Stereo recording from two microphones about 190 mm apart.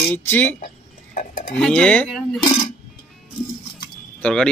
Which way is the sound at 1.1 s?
45° left (ahead or behind).